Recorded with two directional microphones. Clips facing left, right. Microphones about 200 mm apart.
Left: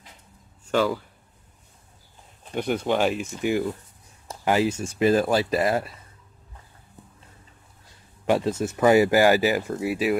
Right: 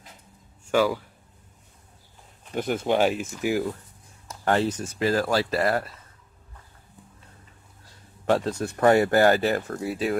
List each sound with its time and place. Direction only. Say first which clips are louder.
0.7 s speech: right 1 dB; 10° right (ahead or behind)
2.5 s speech: even; 5° right (ahead or behind)
4.5 s speech: left 1 dB; 10° left (ahead or behind)
8.3 s speech: left 1 dB; 5° left (ahead or behind)